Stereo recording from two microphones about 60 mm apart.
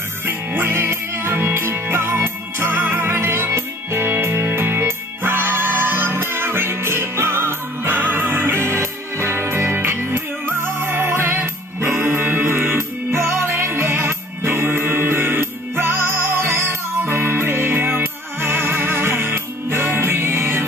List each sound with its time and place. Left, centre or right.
0.2 s music: right